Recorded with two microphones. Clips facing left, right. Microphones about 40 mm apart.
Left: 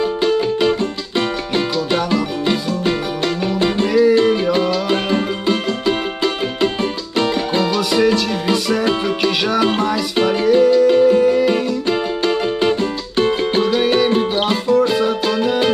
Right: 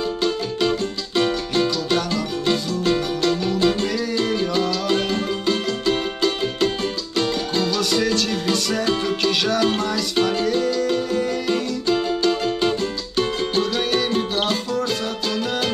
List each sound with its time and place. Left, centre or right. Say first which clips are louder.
0.2 s music: left 6 dB; left